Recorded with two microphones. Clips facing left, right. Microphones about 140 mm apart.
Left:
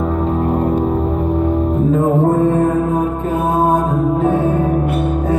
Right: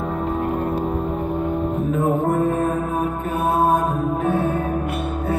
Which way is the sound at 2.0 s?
40° left (ahead or behind).